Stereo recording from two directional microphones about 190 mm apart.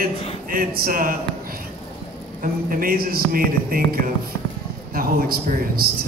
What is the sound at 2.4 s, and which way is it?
A man's voice, 50° right (ahead or behind).